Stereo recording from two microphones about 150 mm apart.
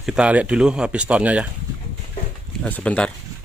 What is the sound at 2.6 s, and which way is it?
Speech, 10° left (ahead or behind).